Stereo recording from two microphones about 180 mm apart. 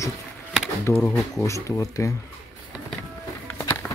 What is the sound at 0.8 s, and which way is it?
Speech, 15° left (ahead or behind).